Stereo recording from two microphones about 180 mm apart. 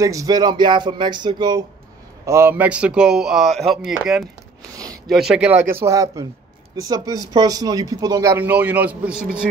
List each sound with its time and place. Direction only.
0.0 s a man's voice: 20° right (ahead or behind)